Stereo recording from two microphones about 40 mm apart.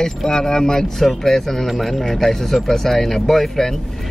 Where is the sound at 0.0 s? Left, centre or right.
Centre.